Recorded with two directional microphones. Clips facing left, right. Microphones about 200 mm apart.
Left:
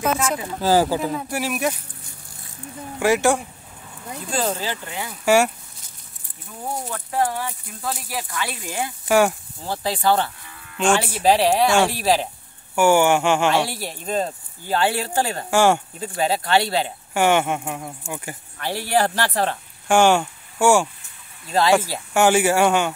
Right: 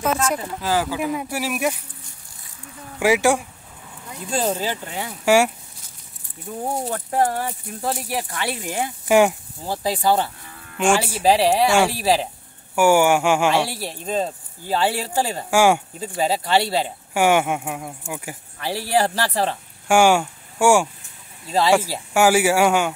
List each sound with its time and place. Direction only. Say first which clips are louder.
0.0 s speech: even; 5° left (ahead or behind)
0.6 s speech: left 7 dB; 35° left (ahead or behind)
1.1 s speech: even; 5° right (ahead or behind)
3.0 s speech: right 1 dB; 10° right (ahead or behind)
4.4 s speech: right 2 dB; 10° right (ahead or behind)
4.8 s speech: right 1 dB; 30° right (ahead or behind)
5.2 s speech: right 1 dB; 10° right (ahead or behind)
6.6 s speech: right 3 dB; 35° right (ahead or behind)
8.6 s speech: right 2 dB; 20° right (ahead or behind)